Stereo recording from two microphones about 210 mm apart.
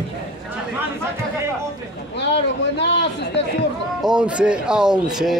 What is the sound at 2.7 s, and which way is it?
Speech, 55° left (ahead or behind).